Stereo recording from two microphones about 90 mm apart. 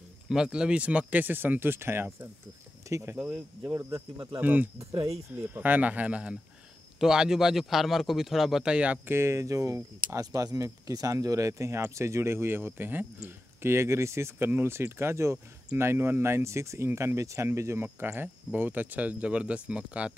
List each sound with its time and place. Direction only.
0.3 s speech: 10° right (ahead or behind); by 2.2 s 25° right (ahead or behind)
2.9 s a sound: 35° right (ahead or behind)
3.2 s speech: 10° right (ahead or behind)
3.7 s speech: 30° right (ahead or behind); by 20.2 s 10° right (ahead or behind)